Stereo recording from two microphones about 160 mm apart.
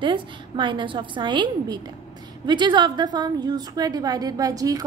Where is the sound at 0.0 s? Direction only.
30° right (ahead or behind).